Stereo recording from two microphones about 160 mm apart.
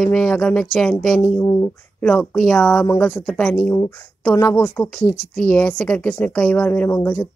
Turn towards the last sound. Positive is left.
turn(degrees=15)  # may be behind; listen again after turning